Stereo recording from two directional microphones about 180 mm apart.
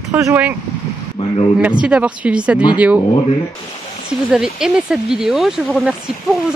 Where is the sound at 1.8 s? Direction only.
5° right (ahead or behind).